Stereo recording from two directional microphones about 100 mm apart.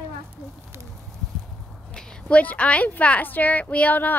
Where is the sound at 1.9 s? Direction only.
15° left (ahead or behind).